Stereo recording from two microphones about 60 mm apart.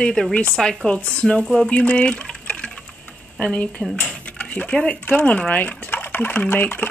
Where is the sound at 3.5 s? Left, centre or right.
Centre.